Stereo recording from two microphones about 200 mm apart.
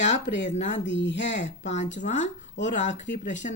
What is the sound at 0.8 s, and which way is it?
Speech, 65° left (ahead or behind).